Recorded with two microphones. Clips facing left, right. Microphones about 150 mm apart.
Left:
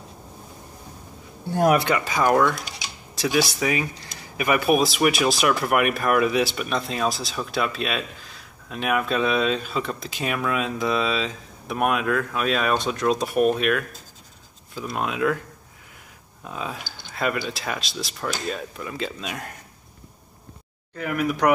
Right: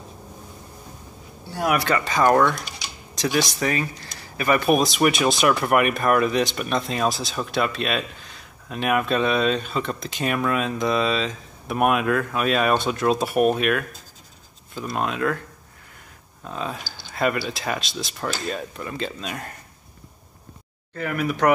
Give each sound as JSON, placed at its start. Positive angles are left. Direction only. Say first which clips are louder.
{"t": 1.9, "sound": "speech", "louder": "right 2 dB", "side_deg": 10}
{"t": 16.4, "sound": "speech", "louder": "right 2 dB", "side_deg": 5}
{"t": 20.9, "sound": "speech", "louder": "even", "side_deg": 5}